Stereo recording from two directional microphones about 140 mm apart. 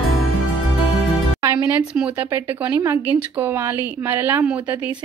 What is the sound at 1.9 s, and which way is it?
A woman's voice, 5° right (ahead or behind).